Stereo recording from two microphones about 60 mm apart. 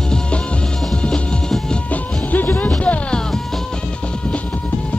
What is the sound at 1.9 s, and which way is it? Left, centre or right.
Music, left.